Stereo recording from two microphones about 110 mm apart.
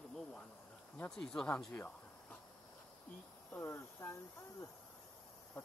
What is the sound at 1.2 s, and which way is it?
Speech, 5° left (ahead or behind).